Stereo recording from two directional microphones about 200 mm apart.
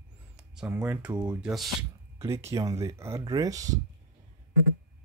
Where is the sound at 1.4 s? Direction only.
5° right (ahead or behind).